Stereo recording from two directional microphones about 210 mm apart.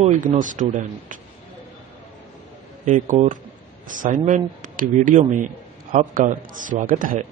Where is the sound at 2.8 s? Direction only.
40° right (ahead or behind).